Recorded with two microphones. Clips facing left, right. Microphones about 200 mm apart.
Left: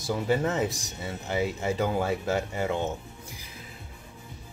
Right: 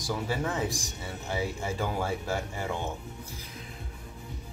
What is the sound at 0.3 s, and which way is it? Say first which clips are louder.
Speech: left 7 dB; 20° left (ahead or behind).